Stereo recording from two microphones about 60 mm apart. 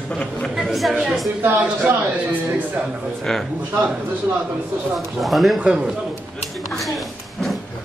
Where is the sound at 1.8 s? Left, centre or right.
Right.